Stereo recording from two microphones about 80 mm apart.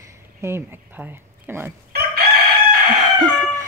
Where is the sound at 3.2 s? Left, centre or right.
Right.